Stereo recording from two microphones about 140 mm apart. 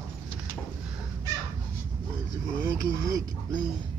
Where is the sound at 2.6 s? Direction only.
25° right (ahead or behind).